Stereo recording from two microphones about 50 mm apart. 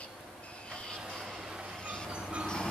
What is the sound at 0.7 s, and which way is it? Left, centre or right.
Train, centre.